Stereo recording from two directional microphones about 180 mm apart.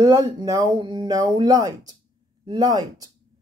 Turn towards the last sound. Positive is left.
turn(degrees=-20)  # may be behind; listen again after turning